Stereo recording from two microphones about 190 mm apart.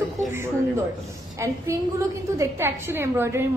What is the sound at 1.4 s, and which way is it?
A woman's voice, 15° right (ahead or behind).